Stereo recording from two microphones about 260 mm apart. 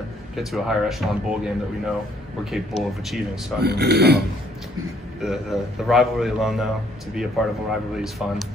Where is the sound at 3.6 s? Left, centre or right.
Right.